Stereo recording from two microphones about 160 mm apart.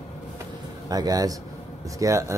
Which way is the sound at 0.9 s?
25° right (ahead or behind).